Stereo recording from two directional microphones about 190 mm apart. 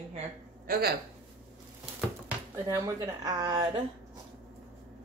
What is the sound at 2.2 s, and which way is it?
Speech, 15° right (ahead or behind).